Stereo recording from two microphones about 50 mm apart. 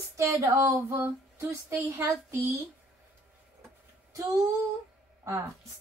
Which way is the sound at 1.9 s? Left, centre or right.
Right.